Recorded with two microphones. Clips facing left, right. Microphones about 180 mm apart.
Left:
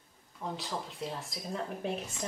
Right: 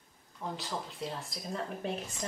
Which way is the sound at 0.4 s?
Centre (ahead or behind).